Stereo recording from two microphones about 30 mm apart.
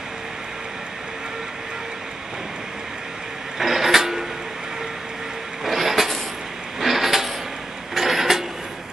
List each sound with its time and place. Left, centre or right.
3.5 s printer: centre
5.7 s vehicle: centre
6.8 s a sound: centre